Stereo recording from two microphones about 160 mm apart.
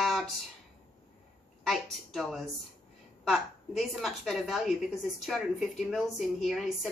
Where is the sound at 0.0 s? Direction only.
Centre (ahead or behind).